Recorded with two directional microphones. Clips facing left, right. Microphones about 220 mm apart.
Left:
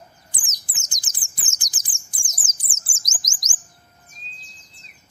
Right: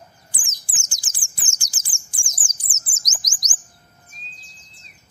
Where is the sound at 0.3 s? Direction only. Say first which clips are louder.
Right 1 dB; 20° left (ahead or behind).